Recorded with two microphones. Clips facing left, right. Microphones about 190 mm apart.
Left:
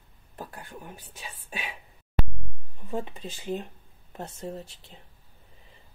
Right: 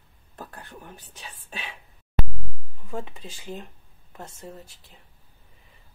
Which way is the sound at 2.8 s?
20° left (ahead or behind).